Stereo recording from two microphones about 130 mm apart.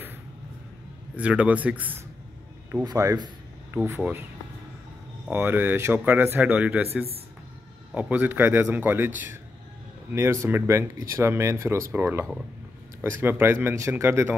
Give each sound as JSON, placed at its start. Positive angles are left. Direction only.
{"t": 1.1, "sound": "speech", "side_deg": -10}
{"t": 2.7, "sound": "speech", "side_deg": -25}
{"t": 3.7, "sound": "speech", "side_deg": -15}
{"t": 5.3, "sound": "speech", "side_deg": -15}
{"t": 10.1, "sound": "speech", "side_deg": -20}